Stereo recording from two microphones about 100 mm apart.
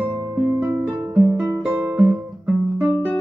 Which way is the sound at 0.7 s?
30° right (ahead or behind).